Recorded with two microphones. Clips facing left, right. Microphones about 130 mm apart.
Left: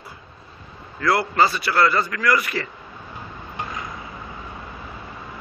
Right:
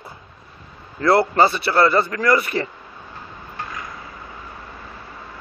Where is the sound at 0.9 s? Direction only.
30° right (ahead or behind).